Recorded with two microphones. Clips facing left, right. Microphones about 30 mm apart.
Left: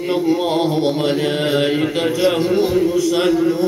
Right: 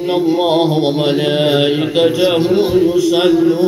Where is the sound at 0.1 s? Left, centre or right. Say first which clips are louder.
Right 4 dB; right.